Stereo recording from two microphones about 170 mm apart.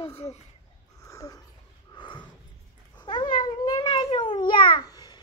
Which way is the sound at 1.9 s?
30° left (ahead or behind).